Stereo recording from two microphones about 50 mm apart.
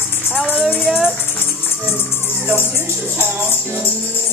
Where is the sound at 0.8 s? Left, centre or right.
Centre.